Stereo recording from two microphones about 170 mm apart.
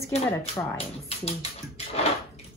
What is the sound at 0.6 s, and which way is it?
Speech, 35° left (ahead or behind).